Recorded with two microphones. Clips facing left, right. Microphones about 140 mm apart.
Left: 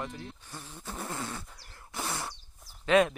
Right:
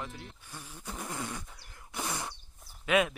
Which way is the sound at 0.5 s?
15° left (ahead or behind).